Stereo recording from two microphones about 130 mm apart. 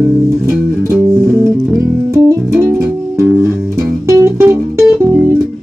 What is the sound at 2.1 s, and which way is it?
Music, 20° right (ahead or behind).